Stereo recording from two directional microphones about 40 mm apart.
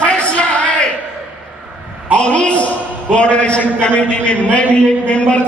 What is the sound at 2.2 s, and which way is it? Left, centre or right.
Speech, left.